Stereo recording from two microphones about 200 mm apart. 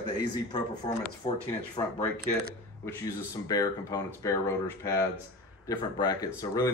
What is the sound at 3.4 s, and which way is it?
Speech, 15° left (ahead or behind).